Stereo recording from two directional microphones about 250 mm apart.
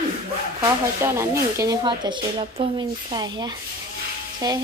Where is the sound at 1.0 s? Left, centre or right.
Centre.